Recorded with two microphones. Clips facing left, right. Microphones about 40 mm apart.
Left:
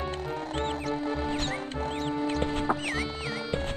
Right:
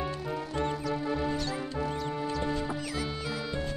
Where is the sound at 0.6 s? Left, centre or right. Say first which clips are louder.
Even; left.